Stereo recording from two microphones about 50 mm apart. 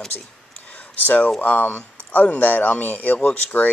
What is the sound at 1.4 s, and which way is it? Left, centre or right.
Speech, left.